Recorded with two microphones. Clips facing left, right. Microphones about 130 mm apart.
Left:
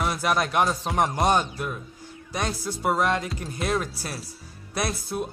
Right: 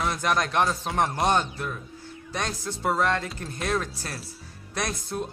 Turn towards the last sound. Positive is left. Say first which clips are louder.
# left 2 dB
turn(degrees=10)  # may be behind; listen again after turning